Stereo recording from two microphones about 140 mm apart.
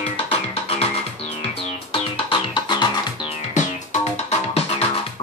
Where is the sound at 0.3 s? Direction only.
45° left (ahead or behind).